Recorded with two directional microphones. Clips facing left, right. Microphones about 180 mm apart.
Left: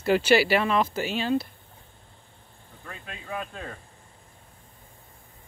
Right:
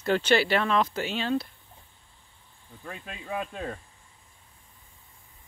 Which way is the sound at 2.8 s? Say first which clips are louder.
Right 2 dB; 25° right (ahead or behind).